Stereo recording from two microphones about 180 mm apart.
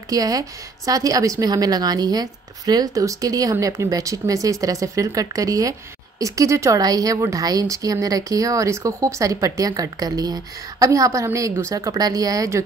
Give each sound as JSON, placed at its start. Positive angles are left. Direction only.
{"t": 0.1, "sound": "a woman's voice", "side_deg": -20}